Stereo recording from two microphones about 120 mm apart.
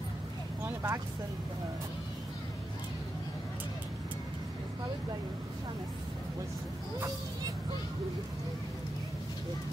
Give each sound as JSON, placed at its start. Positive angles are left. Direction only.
{"t": 0.7, "sound": "vehicle", "side_deg": -25}